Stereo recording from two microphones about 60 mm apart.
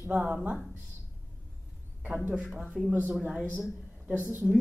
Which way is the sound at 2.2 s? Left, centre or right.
Right.